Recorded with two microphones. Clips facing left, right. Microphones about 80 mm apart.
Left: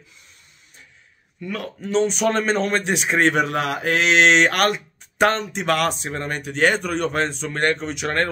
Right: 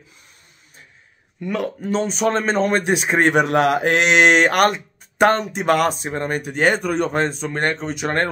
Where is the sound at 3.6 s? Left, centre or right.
Right.